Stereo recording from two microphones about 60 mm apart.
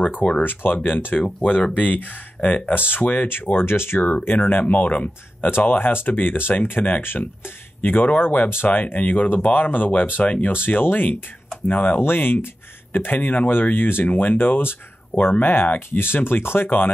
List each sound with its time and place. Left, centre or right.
0.0 s speech: left
1.2 s speech: centre
1.7 s speech: left
4.3 s speech: left
8.9 s speech: left
10.5 s speech: left
12.0 s speech: left